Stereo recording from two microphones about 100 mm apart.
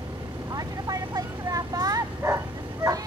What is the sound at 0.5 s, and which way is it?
Bow-wow, 40° right (ahead or behind).